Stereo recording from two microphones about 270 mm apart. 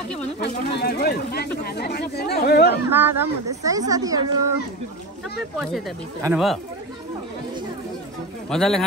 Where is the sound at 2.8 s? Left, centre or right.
Centre.